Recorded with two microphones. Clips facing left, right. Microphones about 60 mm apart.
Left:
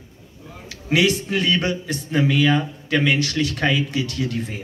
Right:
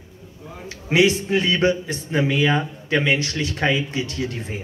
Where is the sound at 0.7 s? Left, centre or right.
Right.